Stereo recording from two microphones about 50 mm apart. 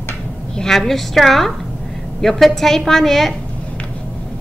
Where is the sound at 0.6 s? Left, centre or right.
Centre.